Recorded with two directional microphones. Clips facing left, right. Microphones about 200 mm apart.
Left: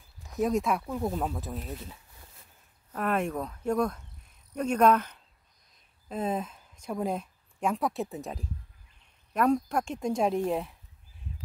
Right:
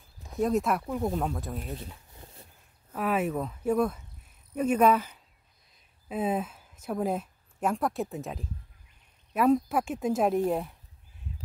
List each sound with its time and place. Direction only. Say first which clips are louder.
0.3 s speech: right 1 dB; centre (ahead or behind)
2.1 s a sound: right 6 dB; 30° right (ahead or behind)
2.9 s speech: right 1 dB; 5° right (ahead or behind)